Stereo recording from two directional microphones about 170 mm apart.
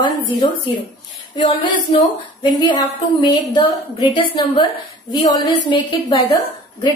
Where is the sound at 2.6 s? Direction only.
25° left (ahead or behind).